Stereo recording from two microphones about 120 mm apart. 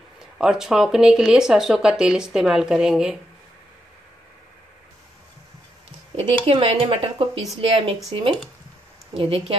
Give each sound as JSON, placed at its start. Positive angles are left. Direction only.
{"t": 0.4, "sound": "speech", "side_deg": -5}
{"t": 6.1, "sound": "speech", "side_deg": -60}
{"t": 9.1, "sound": "speech", "side_deg": -50}